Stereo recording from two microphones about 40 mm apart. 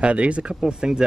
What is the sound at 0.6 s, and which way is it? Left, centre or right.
Speech, centre.